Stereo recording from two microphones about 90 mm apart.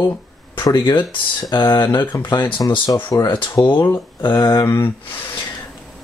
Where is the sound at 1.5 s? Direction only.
55° left (ahead or behind).